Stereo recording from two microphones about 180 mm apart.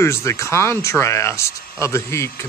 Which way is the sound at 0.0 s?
15° left (ahead or behind).